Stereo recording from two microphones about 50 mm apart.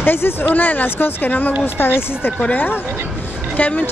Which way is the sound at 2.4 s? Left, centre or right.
Left.